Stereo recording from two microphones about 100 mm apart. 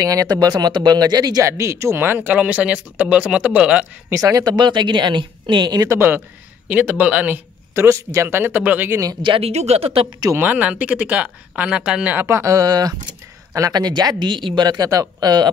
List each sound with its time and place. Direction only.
0.0 s speech: 35° right (ahead or behind); by 3.8 s 10° right (ahead or behind)
4.1 s speech: 35° right (ahead or behind); by 5.8 s 50° right (ahead or behind)
5.8 s speech: 25° right (ahead or behind)
9.4 s speech: 90° right
10.3 s speech: 15° right (ahead or behind)
12.3 s speech: 30° right (ahead or behind)